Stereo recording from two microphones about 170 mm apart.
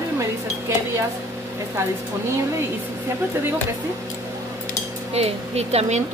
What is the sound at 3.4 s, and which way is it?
Speech, 15° right (ahead or behind).